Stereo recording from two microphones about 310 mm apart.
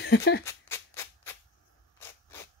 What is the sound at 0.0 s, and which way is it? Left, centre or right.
Speech, left.